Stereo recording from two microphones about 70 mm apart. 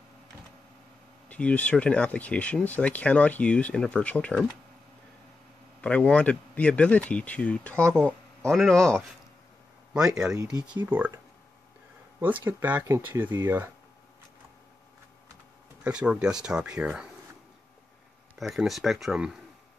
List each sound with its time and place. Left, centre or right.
1.3 s speech: centre
5.8 s speech: centre
9.9 s speech: centre
10.3 s speech: right
10.8 s speech: right
12.2 s speech: right
15.8 s speech: centre
18.4 s speech: centre